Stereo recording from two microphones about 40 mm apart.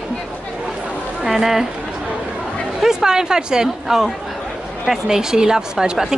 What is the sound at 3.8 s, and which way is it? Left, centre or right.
Speech, centre.